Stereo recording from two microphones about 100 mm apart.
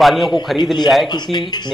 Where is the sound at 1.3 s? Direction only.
45° left (ahead or behind).